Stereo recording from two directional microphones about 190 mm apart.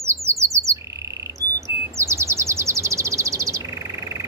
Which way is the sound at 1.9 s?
15° right (ahead or behind).